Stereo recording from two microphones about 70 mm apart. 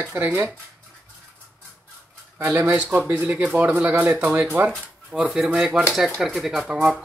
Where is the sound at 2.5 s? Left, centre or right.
Right.